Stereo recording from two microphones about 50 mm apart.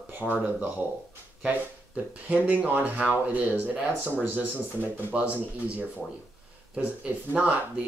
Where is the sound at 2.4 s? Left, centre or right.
Right.